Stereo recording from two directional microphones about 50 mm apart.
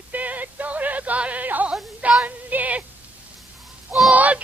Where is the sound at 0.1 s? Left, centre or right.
Right.